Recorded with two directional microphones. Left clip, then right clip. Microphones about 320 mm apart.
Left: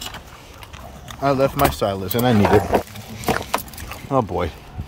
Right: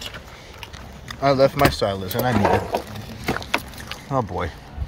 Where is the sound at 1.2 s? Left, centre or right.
Centre.